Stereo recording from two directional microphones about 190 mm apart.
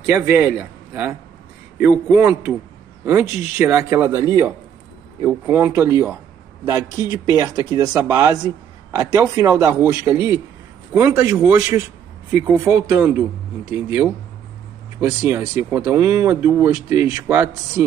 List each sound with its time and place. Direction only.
0.1 s a man's voice: 10° right (ahead or behind)